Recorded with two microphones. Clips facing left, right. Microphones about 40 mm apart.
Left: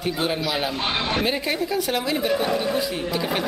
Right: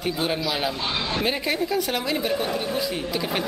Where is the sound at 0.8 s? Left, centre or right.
Left.